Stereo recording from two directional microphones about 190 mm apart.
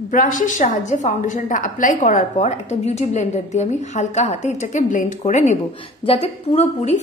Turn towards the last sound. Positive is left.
turn(degrees=35)  # may be behind; listen again after turning